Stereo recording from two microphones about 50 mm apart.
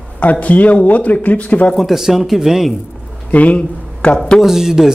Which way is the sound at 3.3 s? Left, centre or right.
Left.